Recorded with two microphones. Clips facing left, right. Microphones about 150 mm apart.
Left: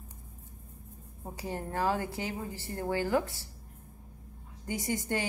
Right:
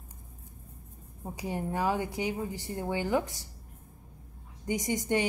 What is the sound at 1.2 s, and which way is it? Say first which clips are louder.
A woman's voice: right 3 dB; 15° right (ahead or behind).